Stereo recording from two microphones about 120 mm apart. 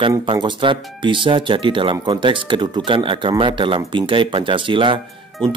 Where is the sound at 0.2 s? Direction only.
40° right (ahead or behind).